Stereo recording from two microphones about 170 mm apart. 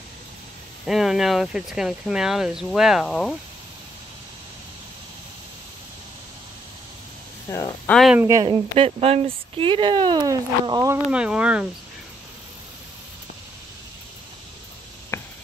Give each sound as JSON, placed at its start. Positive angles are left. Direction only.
{"t": 0.8, "sound": "speech", "side_deg": 0}
{"t": 7.5, "sound": "speech", "side_deg": 20}
{"t": 7.9, "sound": "speech", "side_deg": 0}
{"t": 8.2, "sound": "speech", "side_deg": -15}
{"t": 8.7, "sound": "speech", "side_deg": -35}
{"t": 11.1, "sound": "speech", "side_deg": -5}
{"t": 15.1, "sound": "a sound", "side_deg": 15}